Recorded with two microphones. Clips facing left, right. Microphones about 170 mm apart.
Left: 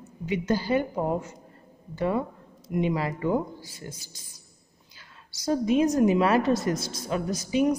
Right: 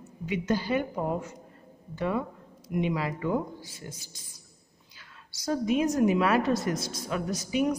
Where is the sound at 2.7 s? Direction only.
40° left (ahead or behind).